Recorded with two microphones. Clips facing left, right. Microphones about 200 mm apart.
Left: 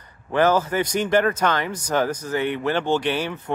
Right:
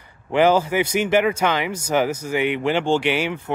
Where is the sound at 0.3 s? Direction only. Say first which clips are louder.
Right 2 dB; 10° right (ahead or behind).